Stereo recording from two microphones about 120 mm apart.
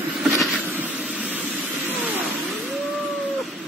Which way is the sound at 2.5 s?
Centre (ahead or behind).